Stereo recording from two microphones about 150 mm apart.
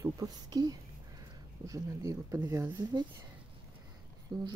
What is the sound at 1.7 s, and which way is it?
Speech, 20° right (ahead or behind).